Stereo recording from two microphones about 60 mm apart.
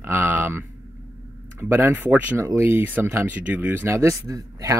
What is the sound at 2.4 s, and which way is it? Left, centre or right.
Speech, right.